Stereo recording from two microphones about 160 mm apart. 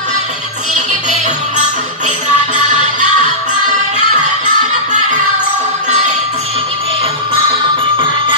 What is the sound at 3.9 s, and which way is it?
Music, 50° right (ahead or behind).